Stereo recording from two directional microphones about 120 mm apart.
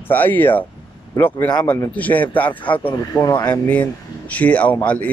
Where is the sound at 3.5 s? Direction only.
10° left (ahead or behind).